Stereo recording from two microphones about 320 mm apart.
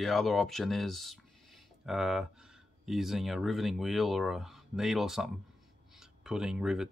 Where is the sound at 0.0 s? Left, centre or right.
Centre.